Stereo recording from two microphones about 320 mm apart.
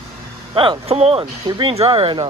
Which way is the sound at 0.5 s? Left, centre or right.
Centre.